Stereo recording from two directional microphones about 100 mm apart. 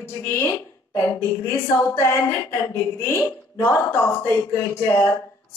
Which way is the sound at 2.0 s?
25° left (ahead or behind).